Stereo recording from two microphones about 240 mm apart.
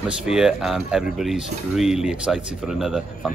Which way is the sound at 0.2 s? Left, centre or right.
Centre.